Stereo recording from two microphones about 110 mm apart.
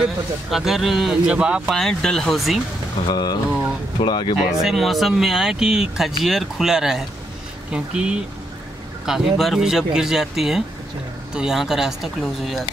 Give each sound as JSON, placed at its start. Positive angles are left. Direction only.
{"t": 0.0, "sound": "speech", "side_deg": -5}
{"t": 1.8, "sound": "speech", "side_deg": 5}
{"t": 3.1, "sound": "speech", "side_deg": 40}
{"t": 4.6, "sound": "speech", "side_deg": 0}